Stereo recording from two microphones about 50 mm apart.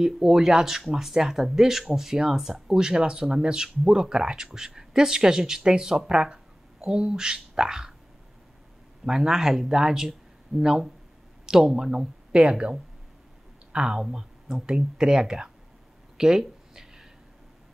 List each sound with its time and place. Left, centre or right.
0.0 s speech: centre
9.0 s speech: centre
12.3 s speech: right
16.2 s a sound: centre